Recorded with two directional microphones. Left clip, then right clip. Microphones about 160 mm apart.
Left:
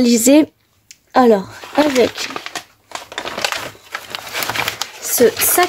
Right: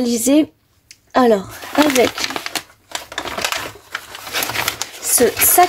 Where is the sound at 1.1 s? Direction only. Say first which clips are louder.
Left 2 dB; 25° left (ahead or behind).